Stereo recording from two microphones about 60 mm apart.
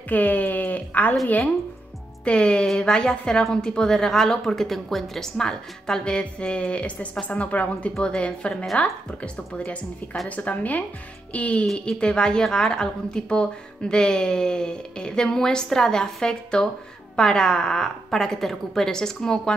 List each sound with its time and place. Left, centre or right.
0.1 s speech: left
2.3 s a woman's voice: centre